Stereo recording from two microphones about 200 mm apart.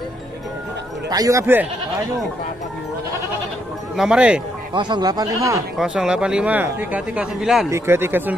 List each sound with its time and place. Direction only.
1.1 s speech: 15° right (ahead or behind)
3.9 s speech: 5° right (ahead or behind)
4.7 s speech: 20° right (ahead or behind)
5.8 s speech: 5° right (ahead or behind)